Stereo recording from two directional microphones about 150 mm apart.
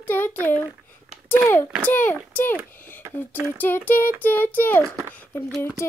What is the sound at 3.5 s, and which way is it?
Child singing, 10° left (ahead or behind).